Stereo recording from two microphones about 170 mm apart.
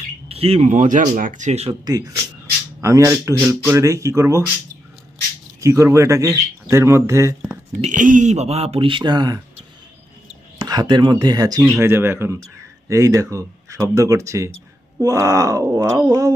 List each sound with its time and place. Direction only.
0.3 s speech: 35° right (ahead or behind)
1.9 s a man's voice: 20° right (ahead or behind)
5.6 s speech: 15° right (ahead or behind)
7.8 s speech: 50° right (ahead or behind); by 9.4 s 25° right (ahead or behind)
10.6 s speech: 25° right (ahead or behind)